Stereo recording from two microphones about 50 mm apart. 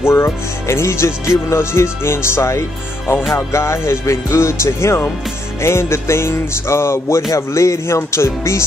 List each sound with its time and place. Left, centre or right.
0.0 s music: left